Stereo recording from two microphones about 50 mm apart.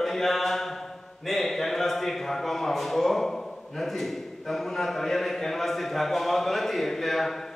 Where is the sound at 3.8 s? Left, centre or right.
Centre.